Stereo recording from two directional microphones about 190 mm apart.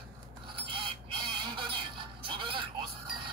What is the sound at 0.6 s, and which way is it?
Music, 25° right (ahead or behind).